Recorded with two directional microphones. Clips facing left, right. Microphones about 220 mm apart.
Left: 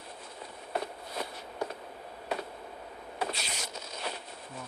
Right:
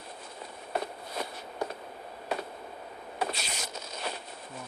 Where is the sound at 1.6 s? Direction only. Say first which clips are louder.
Right 1 dB; 45° right (ahead or behind).